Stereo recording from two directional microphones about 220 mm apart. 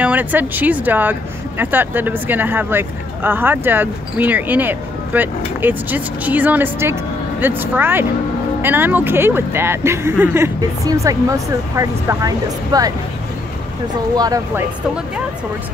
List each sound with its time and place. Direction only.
0.0 s speech: 5° right (ahead or behind)
14.1 s speech: 15° right (ahead or behind)